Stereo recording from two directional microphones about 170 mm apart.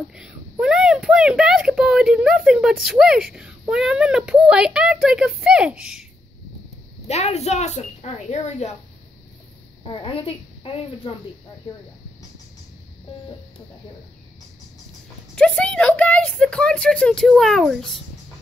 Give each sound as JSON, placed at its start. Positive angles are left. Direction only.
{"t": 0.1, "sound": "speech", "side_deg": -5}
{"t": 7.1, "sound": "speech", "side_deg": 40}
{"t": 9.8, "sound": "a woman's voice", "side_deg": 30}
{"t": 15.3, "sound": "speech", "side_deg": 5}